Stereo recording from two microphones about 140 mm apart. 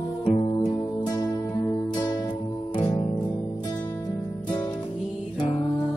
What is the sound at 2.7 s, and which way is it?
Music, 45° left (ahead or behind).